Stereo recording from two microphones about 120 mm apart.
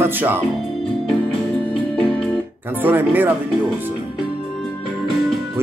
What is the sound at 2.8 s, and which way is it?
Music, 15° right (ahead or behind).